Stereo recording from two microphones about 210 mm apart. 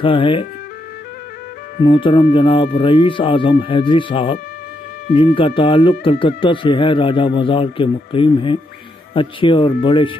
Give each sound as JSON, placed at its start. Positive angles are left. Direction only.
{"t": 0.0, "sound": "speech", "side_deg": 25}
{"t": 1.8, "sound": "speech", "side_deg": 25}